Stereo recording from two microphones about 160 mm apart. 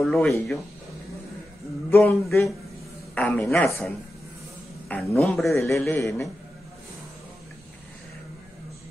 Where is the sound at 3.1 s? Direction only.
10° left (ahead or behind).